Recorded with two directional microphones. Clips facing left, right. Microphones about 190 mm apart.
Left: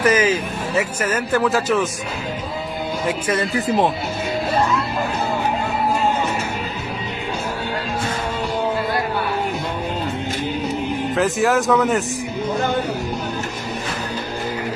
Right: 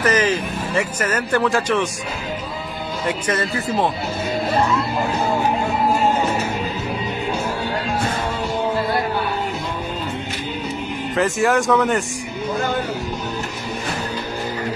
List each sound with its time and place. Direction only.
0.0 s speech: 10° left (ahead or behind)
3.5 s speech: 15° left (ahead or behind)
11.1 s speech: centre (ahead or behind)